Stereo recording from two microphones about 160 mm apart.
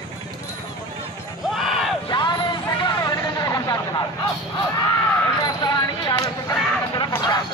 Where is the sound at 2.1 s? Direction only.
25° left (ahead or behind).